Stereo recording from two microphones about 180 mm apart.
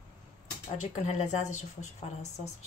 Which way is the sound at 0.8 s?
40° left (ahead or behind).